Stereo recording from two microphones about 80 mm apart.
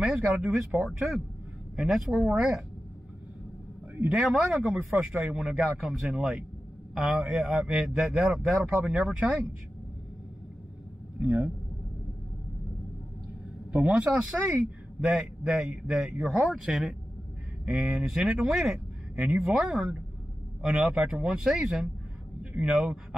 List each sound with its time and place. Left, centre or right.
0.0 s speech: centre
0.8 s speech: centre
4.1 s speech: centre
11.1 s speech: right
13.7 s speech: centre